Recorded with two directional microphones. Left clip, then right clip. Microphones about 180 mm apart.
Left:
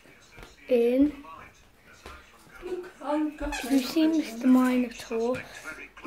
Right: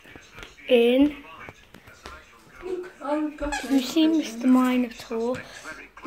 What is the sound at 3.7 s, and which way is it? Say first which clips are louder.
A child's voice: right 3 dB; centre (ahead or behind).